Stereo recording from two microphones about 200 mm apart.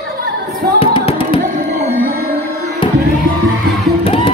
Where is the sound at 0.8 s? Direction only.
25° left (ahead or behind).